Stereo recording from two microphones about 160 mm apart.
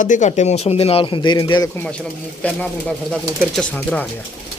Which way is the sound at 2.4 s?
5° left (ahead or behind).